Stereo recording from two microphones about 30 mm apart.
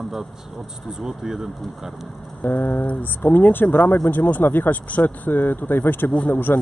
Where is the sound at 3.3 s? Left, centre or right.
Left.